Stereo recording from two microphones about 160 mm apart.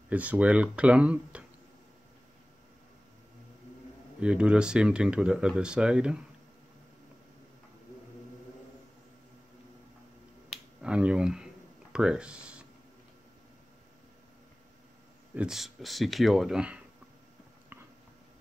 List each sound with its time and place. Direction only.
0.1 s speech: 10° right (ahead or behind)
4.2 s speech: 5° right (ahead or behind)
10.5 s finger snapping: 5° right (ahead or behind)
15.3 s speech: 5° right (ahead or behind)